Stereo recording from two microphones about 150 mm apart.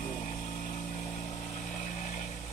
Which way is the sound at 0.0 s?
55° left (ahead or behind).